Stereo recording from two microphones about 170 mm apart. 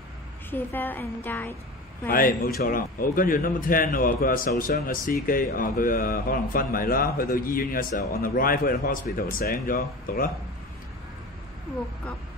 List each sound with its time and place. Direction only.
0.5 s a woman's voice: 10° left (ahead or behind)
2.0 s a man's voice: 60° left (ahead or behind)